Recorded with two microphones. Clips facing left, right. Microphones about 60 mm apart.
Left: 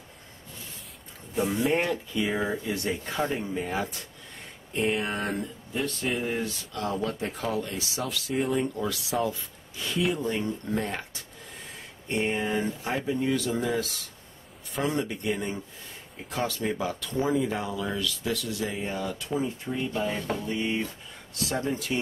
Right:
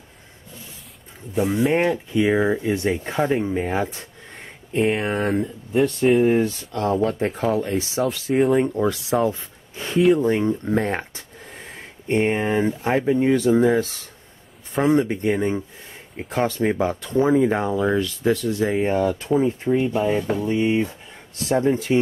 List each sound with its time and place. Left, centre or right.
1.3 s speech: centre
1.7 s speech: right
9.2 s a sound: right
10.2 s speech: right
18.7 s speech: right
19.9 s speech: centre